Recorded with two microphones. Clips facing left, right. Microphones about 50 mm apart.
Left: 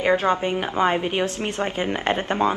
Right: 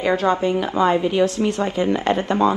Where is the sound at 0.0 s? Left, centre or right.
Left.